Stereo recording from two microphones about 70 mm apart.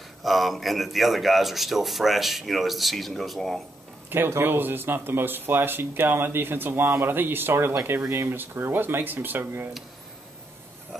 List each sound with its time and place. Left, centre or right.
0.2 s speech: centre
4.1 s speech: right